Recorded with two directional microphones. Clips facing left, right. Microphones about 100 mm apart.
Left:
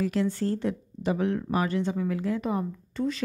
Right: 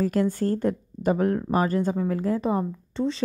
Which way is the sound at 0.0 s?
45° right (ahead or behind).